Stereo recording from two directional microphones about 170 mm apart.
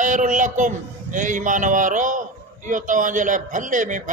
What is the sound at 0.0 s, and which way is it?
A man's voice, 45° right (ahead or behind).